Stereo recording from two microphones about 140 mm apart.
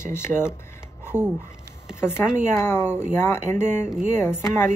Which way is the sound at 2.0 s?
15° left (ahead or behind).